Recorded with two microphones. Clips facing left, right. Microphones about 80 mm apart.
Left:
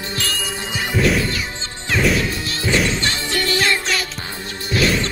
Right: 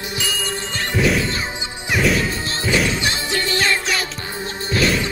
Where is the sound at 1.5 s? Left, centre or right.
Centre.